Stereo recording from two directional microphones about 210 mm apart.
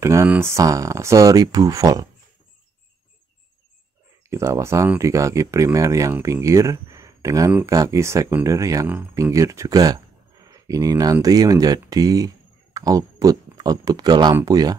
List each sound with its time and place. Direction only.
0.0 s speech: 10° right (ahead or behind)
4.3 s speech: 15° right (ahead or behind)